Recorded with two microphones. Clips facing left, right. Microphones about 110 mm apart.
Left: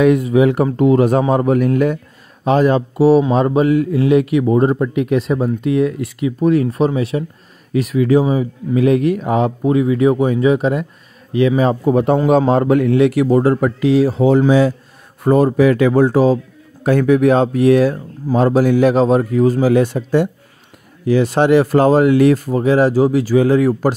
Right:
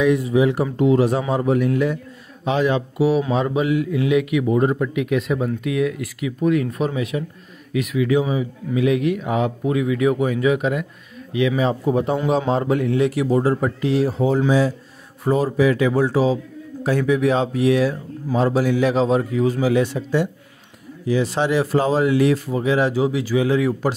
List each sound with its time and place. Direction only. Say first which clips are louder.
0.0 s a man's voice: left 5 dB; 60° left (ahead or behind)
0.7 s speech: left 4 dB; 50° left (ahead or behind)
11.8 s a man's voice: left 6 dB; 60° left (ahead or behind); by 14.4 s 80° left
14.4 s a man's voice: left 5 dB; 65° left (ahead or behind); by 23.9 s 45° left (ahead or behind)